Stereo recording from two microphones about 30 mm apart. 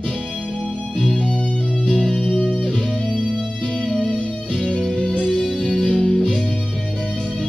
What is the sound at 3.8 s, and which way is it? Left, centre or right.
Music, left.